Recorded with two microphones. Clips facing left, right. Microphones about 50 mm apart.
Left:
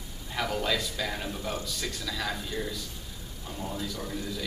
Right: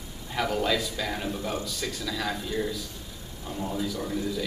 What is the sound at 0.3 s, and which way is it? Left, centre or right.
Speech, centre.